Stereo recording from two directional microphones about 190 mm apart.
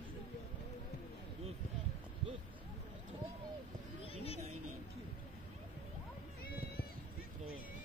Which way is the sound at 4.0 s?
30° left (ahead or behind).